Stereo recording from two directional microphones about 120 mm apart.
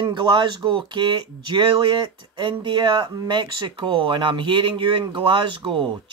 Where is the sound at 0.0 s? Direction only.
40° right (ahead or behind).